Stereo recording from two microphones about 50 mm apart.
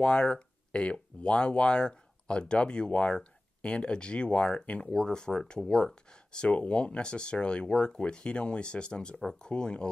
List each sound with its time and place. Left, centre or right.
0.0 s speech: centre